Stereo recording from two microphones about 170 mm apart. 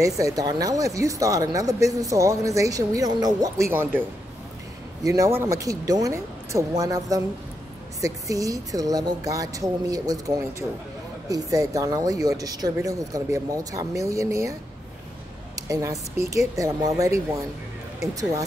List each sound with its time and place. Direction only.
0.0 s speech: 20° right (ahead or behind)
5.0 s speech: 20° right (ahead or behind)
15.5 s speech: 20° right (ahead or behind)